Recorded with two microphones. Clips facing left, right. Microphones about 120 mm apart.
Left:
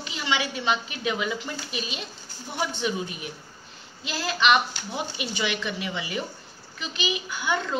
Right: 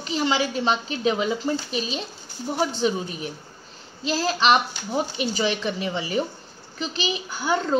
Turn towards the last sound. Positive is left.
turn(degrees=-35)  # may be behind; listen again after turning